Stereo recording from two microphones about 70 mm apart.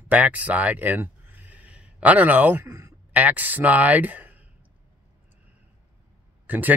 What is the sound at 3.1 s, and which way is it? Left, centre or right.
Speech, right.